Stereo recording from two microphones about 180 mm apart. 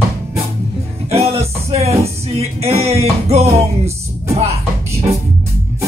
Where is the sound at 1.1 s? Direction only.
35° right (ahead or behind).